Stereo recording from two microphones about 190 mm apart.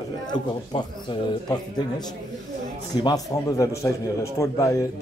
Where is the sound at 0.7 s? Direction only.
30° left (ahead or behind).